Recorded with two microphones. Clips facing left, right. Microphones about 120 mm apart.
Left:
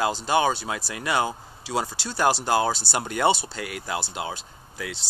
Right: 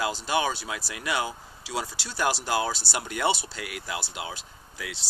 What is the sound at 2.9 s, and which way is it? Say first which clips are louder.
Speech: left 4 dB; 45° left (ahead or behind).